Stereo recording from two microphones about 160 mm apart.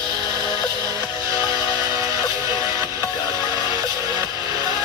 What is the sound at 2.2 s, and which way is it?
Music, 30° left (ahead or behind).